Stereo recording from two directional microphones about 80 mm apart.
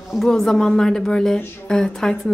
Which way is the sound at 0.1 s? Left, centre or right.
Centre.